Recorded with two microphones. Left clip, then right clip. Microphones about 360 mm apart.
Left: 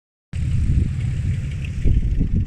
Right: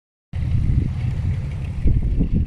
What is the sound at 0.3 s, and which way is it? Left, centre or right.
Vehicle, centre.